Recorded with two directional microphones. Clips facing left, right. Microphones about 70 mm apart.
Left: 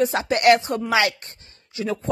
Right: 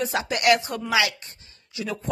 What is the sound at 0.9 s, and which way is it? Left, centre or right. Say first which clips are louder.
Speech: left 2 dB; left.